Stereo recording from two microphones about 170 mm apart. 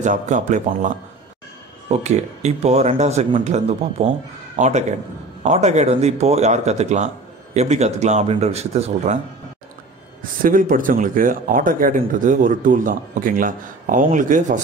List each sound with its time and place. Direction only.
0.0 s speech: 45° right (ahead or behind)
10.4 s speech: 55° right (ahead or behind)